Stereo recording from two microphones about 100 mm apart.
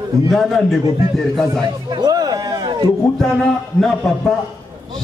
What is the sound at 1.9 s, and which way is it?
Music, 40° right (ahead or behind).